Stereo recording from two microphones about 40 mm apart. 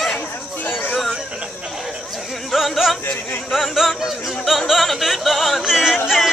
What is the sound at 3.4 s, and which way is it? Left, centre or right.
Yodeling, centre.